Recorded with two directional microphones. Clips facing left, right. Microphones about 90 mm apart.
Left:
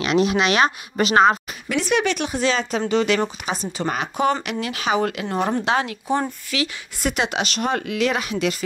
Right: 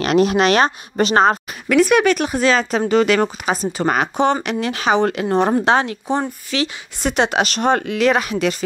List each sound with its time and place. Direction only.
0.0 s speech: 45° right (ahead or behind)
1.7 s speech: 55° right (ahead or behind)
4.2 s speech: 35° right (ahead or behind)